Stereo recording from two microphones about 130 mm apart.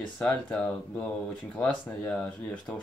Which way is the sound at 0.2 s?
5° left (ahead or behind).